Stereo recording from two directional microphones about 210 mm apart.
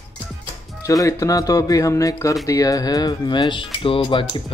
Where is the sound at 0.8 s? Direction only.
15° left (ahead or behind).